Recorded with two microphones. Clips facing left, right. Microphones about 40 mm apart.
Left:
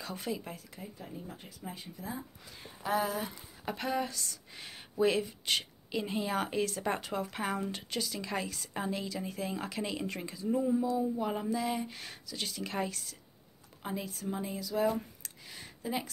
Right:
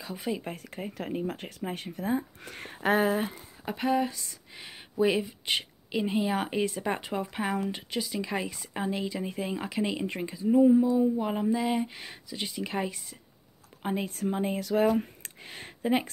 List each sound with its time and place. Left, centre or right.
0.0 s speech: centre
0.3 s speech: right
0.6 s speech: right
0.9 s speech: right
1.6 s speech: right
2.4 s speech: right
2.9 s speech: right
3.6 s speech: centre
13.8 s speech: right
15.0 s a sound: right